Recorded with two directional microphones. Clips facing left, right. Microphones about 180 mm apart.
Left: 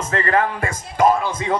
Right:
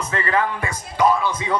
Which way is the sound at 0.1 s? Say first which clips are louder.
Left 3 dB; 45° left (ahead or behind).